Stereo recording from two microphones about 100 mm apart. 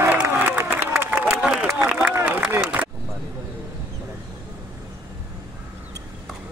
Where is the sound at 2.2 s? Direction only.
20° right (ahead or behind).